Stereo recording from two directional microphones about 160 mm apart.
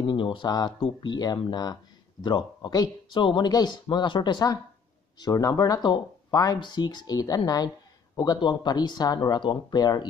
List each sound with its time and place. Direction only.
0.0 s speech: 30° left (ahead or behind)